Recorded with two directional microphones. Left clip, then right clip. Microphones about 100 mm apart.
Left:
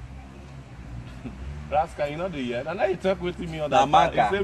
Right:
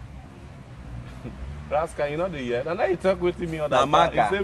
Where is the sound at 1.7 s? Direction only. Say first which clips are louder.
Even; 35° right (ahead or behind).